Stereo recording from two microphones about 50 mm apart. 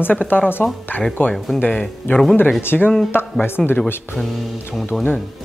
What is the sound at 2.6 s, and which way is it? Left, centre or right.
Speech, left.